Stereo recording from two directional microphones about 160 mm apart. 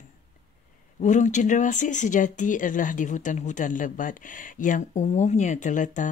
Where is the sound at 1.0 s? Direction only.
50° left (ahead or behind).